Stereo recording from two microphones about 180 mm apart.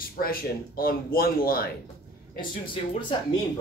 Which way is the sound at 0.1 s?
55° left (ahead or behind).